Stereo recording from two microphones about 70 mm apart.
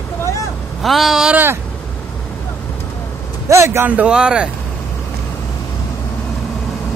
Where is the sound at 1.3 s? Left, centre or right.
Right.